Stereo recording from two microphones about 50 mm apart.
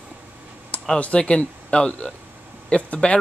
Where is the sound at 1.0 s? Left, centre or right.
Left.